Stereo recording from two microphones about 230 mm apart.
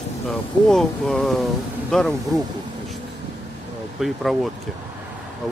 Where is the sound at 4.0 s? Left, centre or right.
Centre.